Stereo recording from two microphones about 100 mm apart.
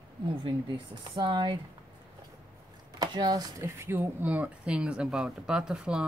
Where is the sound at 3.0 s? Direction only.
40° right (ahead or behind).